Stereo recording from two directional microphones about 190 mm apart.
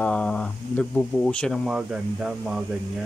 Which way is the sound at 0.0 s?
5° left (ahead or behind).